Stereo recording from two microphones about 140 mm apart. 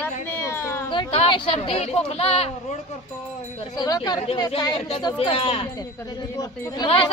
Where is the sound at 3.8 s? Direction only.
30° left (ahead or behind).